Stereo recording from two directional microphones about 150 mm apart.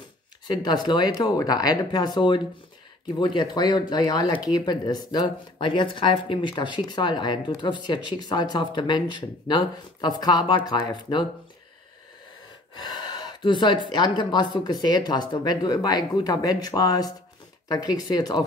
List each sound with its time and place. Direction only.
0.5 s speech: 30° left (ahead or behind)
12.8 s speech: 30° left (ahead or behind)